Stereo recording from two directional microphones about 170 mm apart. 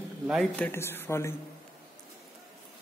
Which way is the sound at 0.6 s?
15° left (ahead or behind).